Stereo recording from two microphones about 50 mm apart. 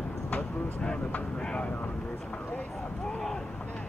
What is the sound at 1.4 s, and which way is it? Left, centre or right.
Speech, centre.